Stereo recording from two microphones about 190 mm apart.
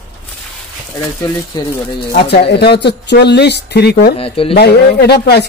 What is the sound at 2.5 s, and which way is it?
Speech, 60° left (ahead or behind).